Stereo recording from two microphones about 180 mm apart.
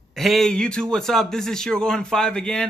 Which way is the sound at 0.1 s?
Centre (ahead or behind).